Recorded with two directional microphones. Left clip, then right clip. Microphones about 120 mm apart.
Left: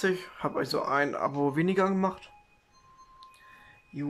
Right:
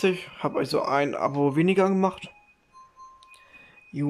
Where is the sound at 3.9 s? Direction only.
20° right (ahead or behind).